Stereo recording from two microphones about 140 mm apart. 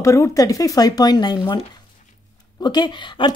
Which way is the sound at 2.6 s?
30° left (ahead or behind).